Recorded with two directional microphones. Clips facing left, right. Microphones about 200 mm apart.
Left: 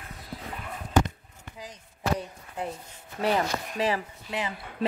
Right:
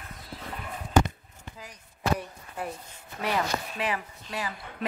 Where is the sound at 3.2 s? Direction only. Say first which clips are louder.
Left 3 dB; 30° left (ahead or behind).